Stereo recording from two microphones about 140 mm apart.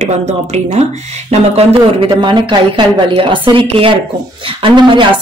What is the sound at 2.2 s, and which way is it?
A woman's voice, 35° right (ahead or behind).